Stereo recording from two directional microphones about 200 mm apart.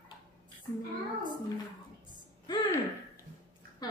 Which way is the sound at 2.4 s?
20° left (ahead or behind).